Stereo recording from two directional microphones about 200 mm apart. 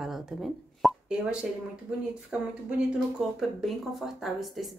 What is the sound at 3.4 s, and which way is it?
Speech, centre (ahead or behind).